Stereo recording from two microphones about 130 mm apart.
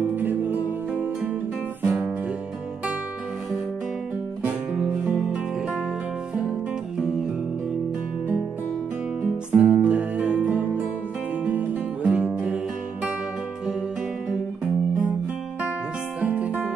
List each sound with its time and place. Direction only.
0.1 s music: 15° right (ahead or behind)
1.9 s guitar: 5° right (ahead or behind)
4.5 s music: 10° right (ahead or behind)
9.5 s music: 10° right (ahead or behind)
16.2 s music: 10° right (ahead or behind)